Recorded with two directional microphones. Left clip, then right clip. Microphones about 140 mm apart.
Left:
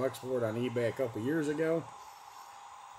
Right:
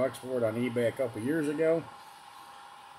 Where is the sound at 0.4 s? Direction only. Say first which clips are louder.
Right 5 dB; 15° right (ahead or behind).